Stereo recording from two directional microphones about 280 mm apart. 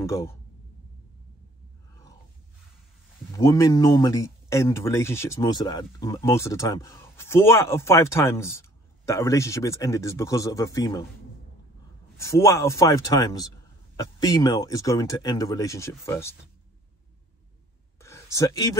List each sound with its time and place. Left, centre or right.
0.0 s speech: centre
3.3 s speech: centre
12.2 s speech: centre
17.9 s a sound: centre